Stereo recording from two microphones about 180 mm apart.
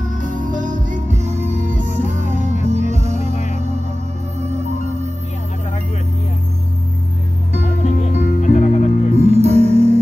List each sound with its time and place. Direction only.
0.2 s music: 45° right (ahead or behind)
3.3 s music: 40° left (ahead or behind)
4.4 s music: 40° right (ahead or behind)
7.8 s music: 40° left (ahead or behind)
9.1 s music: 35° right (ahead or behind)